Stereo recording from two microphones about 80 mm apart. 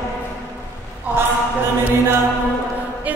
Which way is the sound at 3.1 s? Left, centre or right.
Right.